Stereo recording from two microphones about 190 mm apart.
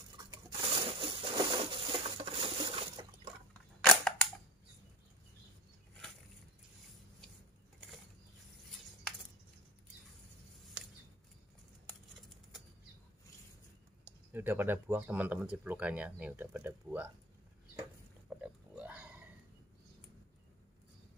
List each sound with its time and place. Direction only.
0.3 s pigeon: 25° right (ahead or behind)
3.8 s cap gun: 5° left (ahead or behind)
14.0 s speech: 10° right (ahead or behind)
18.3 s pig: 5° right (ahead or behind)